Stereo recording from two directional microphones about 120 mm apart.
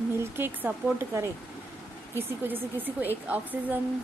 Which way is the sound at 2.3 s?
15° right (ahead or behind).